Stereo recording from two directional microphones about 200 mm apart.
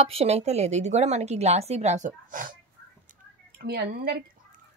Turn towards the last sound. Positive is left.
turn(degrees=-55)  # may be behind; listen again after turning